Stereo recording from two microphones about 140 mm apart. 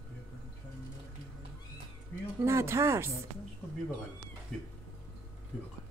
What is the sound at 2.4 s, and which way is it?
Speech, 20° right (ahead or behind).